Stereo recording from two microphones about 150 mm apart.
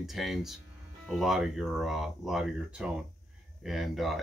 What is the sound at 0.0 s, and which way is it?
Speech, centre (ahead or behind).